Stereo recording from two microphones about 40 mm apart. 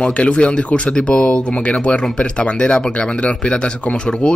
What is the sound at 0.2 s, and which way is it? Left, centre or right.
Speech, left.